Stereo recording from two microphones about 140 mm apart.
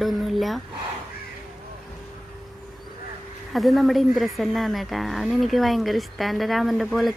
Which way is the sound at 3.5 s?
Centre (ahead or behind).